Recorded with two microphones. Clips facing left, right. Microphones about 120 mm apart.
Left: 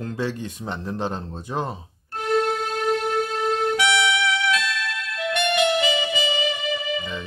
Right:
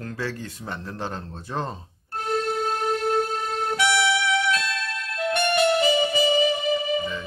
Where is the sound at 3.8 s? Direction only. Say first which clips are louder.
Left 1 dB; 45° right (ahead or behind).